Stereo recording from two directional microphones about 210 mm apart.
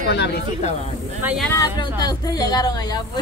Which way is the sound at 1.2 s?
5° right (ahead or behind).